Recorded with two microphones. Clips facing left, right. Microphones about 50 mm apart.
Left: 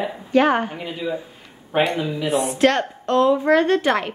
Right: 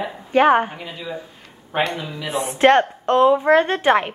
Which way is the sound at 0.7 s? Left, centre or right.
Centre.